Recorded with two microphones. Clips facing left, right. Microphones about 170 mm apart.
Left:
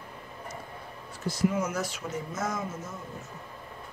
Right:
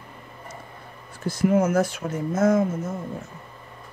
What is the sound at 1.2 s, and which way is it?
Speech, 55° right (ahead or behind).